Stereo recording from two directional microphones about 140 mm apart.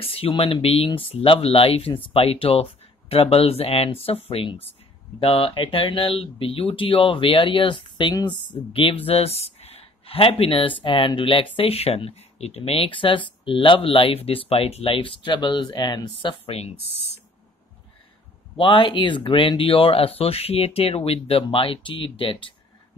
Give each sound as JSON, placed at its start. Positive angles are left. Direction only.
{"t": 0.0, "sound": "speech", "side_deg": 40}
{"t": 18.6, "sound": "speech", "side_deg": 35}